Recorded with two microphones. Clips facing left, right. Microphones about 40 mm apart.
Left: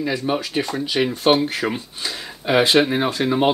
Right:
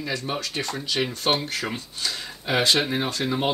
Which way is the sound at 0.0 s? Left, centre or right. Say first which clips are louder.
Left 6 dB; centre.